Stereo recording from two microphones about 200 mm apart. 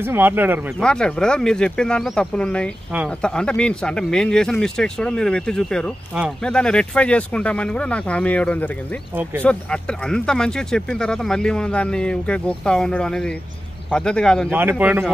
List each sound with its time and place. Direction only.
0.0 s speech: 10° right (ahead or behind)
0.7 s speech: 5° left (ahead or behind)
14.5 s speech: 10° right (ahead or behind)